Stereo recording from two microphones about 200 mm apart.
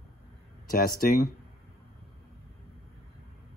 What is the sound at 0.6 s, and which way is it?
Speech, 45° left (ahead or behind).